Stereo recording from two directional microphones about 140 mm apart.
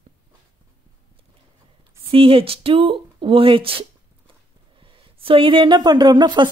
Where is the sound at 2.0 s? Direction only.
40° right (ahead or behind).